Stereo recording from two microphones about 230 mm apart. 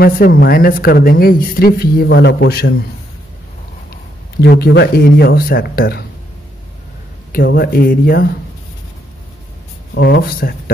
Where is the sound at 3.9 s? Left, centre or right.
Left.